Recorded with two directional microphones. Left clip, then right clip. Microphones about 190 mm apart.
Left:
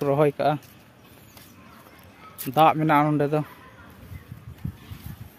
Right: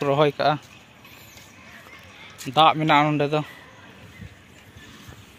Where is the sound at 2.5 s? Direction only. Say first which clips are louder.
Right 2 dB; 20° left (ahead or behind).